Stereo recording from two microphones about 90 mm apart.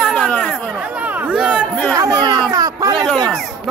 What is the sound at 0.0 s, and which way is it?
Chatter, 10° left (ahead or behind).